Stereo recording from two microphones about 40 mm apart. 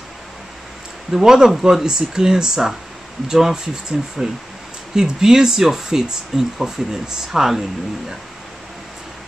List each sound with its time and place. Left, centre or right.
1.1 s speech: centre